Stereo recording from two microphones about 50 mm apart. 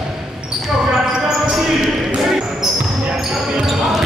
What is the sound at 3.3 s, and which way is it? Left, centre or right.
Basketball bounce, centre.